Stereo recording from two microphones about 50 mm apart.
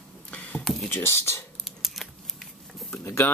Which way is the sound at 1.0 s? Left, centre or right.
Left.